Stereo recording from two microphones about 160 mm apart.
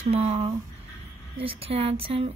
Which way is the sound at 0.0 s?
40° right (ahead or behind).